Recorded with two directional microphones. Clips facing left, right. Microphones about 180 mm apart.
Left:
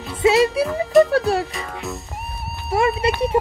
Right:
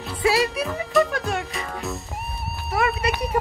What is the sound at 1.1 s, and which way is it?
Music, 35° left (ahead or behind).